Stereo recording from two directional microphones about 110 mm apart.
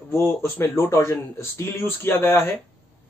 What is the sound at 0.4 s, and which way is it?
Speech, 25° left (ahead or behind).